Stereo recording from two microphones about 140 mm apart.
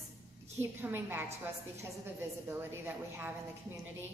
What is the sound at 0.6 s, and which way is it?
A woman's voice, 15° right (ahead or behind).